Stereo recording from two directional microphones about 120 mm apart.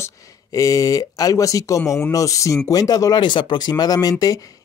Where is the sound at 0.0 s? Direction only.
30° left (ahead or behind).